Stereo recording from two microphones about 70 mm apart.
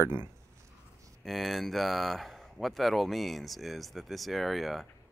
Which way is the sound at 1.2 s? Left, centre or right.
Centre.